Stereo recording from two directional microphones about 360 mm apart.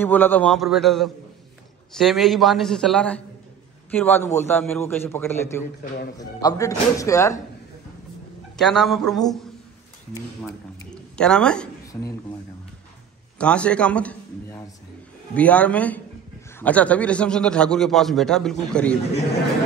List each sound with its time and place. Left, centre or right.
0.0 s a man's voice: centre
8.5 s a man's voice: centre
11.1 s speech: centre
13.4 s a man's voice: centre